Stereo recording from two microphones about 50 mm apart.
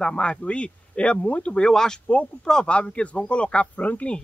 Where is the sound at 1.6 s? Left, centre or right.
Centre.